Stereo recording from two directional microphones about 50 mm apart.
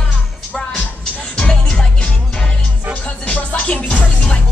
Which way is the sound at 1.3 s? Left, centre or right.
Centre.